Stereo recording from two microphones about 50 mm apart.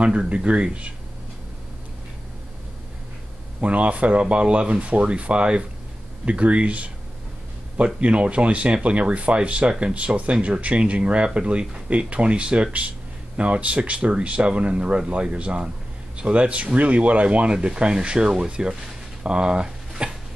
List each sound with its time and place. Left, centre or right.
0.0 s speech: right
3.6 s speech: right
19.2 s a sound: centre